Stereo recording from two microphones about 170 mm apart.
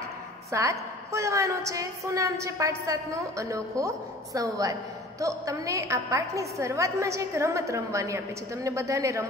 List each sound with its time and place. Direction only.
0.5 s a woman's voice: 20° right (ahead or behind)